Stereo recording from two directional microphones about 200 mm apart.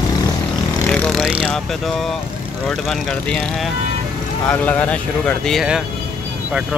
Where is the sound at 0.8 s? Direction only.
5° left (ahead or behind).